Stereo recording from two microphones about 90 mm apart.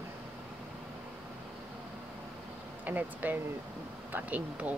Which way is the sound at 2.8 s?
20° right (ahead or behind).